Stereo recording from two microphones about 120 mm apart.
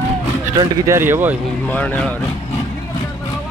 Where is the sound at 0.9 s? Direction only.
20° right (ahead or behind).